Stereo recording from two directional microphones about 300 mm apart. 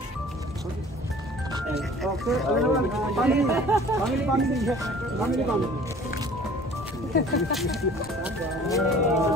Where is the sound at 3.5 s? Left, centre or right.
Centre.